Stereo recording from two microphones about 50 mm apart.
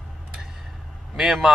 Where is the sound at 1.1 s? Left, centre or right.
Centre.